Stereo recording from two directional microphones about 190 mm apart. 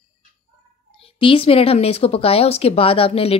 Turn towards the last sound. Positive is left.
turn(degrees=30)  # may be behind; listen again after turning